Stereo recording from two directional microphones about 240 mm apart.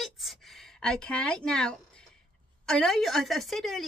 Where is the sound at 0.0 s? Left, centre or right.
Centre.